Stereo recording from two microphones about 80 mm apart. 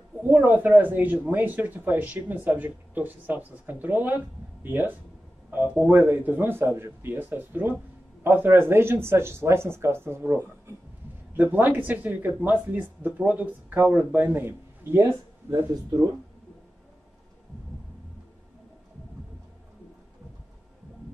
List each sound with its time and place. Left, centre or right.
0.2 s speech: right